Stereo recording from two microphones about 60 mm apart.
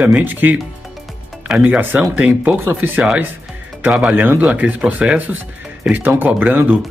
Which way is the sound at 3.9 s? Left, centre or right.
Centre.